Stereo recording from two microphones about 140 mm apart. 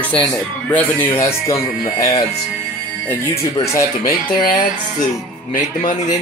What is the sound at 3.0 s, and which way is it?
Speech, 15° left (ahead or behind).